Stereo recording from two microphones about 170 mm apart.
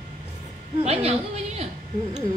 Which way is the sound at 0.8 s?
35° right (ahead or behind).